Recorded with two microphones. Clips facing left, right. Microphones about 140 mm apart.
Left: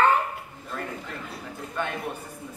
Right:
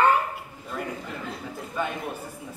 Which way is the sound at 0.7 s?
5° right (ahead or behind).